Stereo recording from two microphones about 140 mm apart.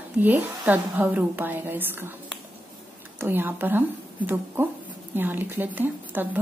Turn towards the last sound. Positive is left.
turn(degrees=-15)  # may be behind; listen again after turning